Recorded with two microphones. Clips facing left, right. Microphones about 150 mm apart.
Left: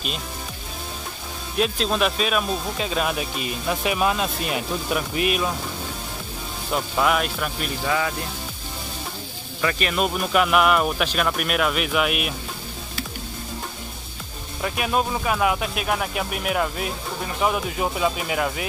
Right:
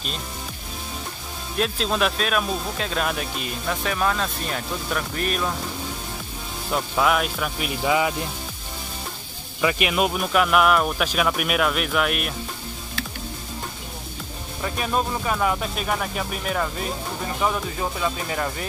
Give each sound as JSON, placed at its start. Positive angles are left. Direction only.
{"t": 1.6, "sound": "speech", "side_deg": 0}
{"t": 6.7, "sound": "speech", "side_deg": 0}
{"t": 7.8, "sound": "speech", "side_deg": -15}
{"t": 9.6, "sound": "speech", "side_deg": -10}
{"t": 14.6, "sound": "speech", "side_deg": 5}